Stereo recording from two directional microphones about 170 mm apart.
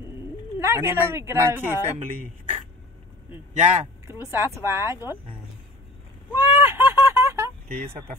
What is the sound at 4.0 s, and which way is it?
Speech, 15° right (ahead or behind).